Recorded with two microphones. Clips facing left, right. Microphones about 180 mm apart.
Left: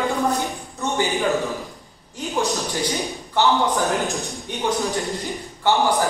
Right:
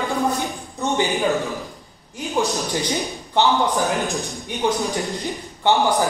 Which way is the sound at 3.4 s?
20° right (ahead or behind).